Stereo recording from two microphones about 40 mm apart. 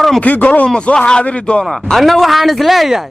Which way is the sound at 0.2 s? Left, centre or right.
Left.